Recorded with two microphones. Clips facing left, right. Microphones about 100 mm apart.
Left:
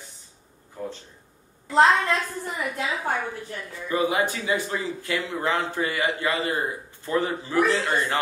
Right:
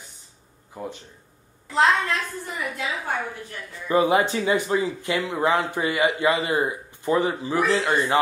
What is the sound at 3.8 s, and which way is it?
Speech, 25° right (ahead or behind).